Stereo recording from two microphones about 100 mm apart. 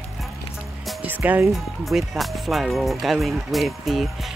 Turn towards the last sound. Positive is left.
turn(degrees=0)  # may be behind; listen again after turning